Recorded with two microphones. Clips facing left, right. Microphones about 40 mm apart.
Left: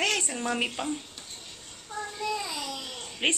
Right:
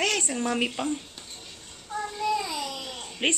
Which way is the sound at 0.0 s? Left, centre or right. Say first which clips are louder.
Right 2 dB; centre.